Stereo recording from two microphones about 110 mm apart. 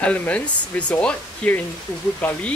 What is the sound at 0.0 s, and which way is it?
Speech, 10° left (ahead or behind).